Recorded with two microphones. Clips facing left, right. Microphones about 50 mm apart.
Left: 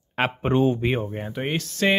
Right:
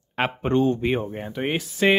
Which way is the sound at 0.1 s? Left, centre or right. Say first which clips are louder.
Even; centre.